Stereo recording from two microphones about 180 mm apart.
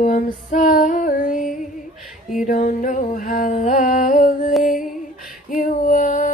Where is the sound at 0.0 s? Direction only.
45° left (ahead or behind).